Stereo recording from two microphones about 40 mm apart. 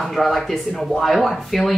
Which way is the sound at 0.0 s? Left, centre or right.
Centre.